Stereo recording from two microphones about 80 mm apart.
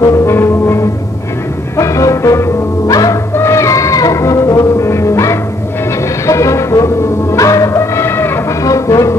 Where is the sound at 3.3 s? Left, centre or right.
Left.